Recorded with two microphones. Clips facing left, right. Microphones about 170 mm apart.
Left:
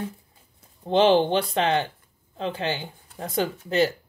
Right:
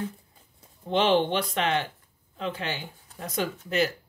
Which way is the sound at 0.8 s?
30° left (ahead or behind).